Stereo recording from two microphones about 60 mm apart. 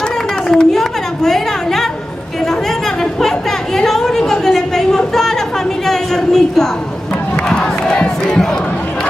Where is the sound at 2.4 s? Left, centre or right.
Centre.